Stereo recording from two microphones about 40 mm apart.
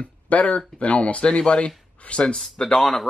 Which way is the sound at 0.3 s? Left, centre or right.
Left.